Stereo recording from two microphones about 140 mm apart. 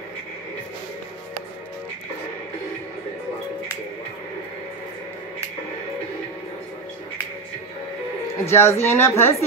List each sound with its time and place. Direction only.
8.5 s a woman's voice: 20° left (ahead or behind)